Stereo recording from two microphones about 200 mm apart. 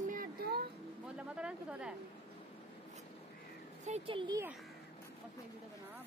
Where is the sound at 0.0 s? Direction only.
45° right (ahead or behind).